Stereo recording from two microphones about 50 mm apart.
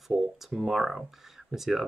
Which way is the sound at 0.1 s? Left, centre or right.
Centre.